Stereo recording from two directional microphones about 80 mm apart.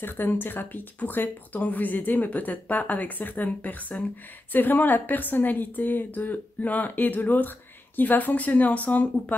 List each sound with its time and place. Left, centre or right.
0.0 s a woman's voice: left